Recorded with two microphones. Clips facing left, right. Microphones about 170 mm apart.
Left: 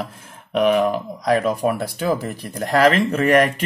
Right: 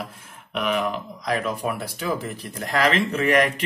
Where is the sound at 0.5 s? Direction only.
40° left (ahead or behind).